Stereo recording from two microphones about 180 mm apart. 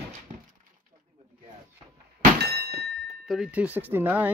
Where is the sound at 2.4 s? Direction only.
65° right (ahead or behind).